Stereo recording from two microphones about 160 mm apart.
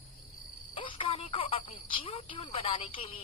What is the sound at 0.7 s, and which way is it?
Speech, 35° left (ahead or behind).